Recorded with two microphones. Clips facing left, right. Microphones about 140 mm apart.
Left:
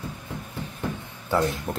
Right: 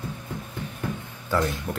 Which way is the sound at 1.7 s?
25° left (ahead or behind).